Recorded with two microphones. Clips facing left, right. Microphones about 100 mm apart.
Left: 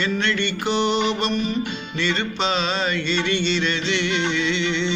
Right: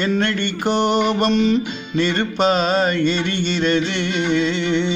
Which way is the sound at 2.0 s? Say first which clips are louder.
Right 6 dB; 50° right (ahead or behind).